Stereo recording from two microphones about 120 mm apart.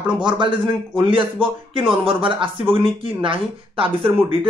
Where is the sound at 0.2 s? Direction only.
40° right (ahead or behind).